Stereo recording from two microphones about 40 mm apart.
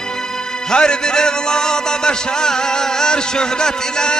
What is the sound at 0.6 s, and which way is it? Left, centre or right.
Music, centre.